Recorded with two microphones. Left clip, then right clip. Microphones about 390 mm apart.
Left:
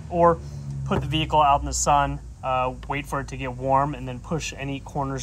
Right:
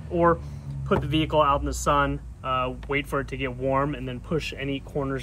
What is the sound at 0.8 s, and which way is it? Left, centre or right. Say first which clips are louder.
Speech: right 1 dB; centre.